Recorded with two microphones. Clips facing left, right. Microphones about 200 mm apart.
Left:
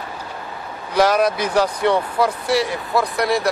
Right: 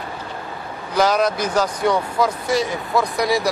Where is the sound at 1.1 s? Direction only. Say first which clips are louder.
Even; 10° left (ahead or behind).